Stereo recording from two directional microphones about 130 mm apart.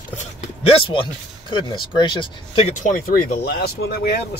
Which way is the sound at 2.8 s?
85° left.